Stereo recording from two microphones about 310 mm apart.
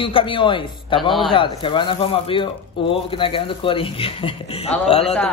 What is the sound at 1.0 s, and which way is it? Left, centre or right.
Speech, centre.